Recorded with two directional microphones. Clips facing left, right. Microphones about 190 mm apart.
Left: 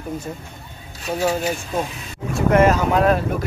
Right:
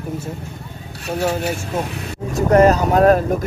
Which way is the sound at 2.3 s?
40° right (ahead or behind).